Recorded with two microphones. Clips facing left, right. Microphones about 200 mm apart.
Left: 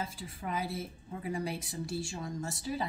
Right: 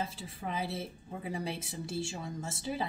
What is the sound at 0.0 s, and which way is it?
A woman's voice, 25° right (ahead or behind).